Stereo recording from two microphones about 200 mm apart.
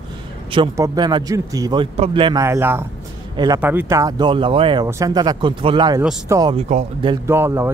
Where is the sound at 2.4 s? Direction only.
10° right (ahead or behind).